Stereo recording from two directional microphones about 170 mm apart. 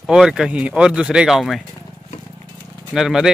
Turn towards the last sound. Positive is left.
turn(degrees=-5)  # may be behind; listen again after turning